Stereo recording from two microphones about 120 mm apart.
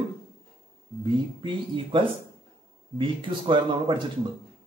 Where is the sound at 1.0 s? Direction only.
40° right (ahead or behind).